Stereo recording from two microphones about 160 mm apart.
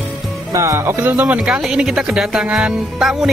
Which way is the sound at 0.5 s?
20° right (ahead or behind).